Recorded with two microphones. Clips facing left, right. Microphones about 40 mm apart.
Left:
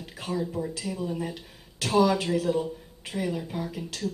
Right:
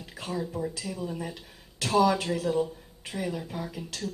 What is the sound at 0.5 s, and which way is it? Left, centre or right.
Speech, centre.